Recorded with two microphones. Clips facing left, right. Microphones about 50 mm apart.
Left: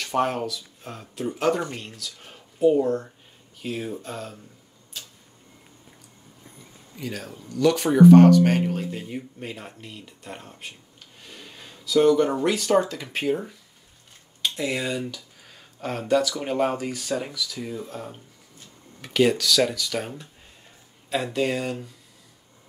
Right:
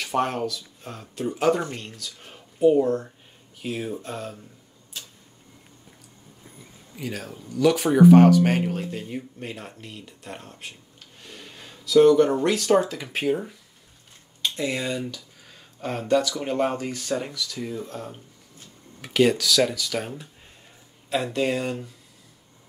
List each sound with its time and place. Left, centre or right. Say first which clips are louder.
0.0 s speech: even; centre
4.9 s tick-tock: even; centre
6.4 s speech: even; centre
11.1 s a sound: right 1 dB; centre
12.4 s speech: right 1 dB; centre